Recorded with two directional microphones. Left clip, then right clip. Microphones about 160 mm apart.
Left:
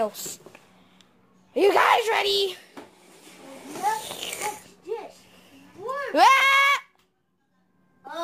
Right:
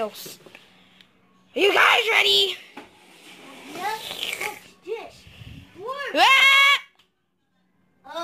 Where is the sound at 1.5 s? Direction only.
Centre (ahead or behind).